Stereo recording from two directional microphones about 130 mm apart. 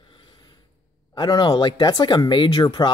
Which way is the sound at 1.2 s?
35° left (ahead or behind).